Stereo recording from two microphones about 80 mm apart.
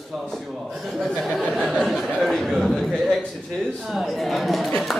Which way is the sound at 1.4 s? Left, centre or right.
Centre.